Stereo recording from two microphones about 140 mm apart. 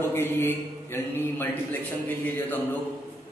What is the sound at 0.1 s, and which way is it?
A man's voice, 15° left (ahead or behind).